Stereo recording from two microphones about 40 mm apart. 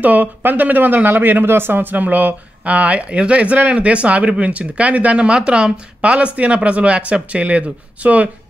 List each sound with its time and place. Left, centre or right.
0.0 s speech: right